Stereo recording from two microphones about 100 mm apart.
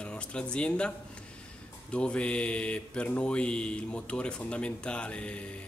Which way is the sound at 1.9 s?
10° left (ahead or behind).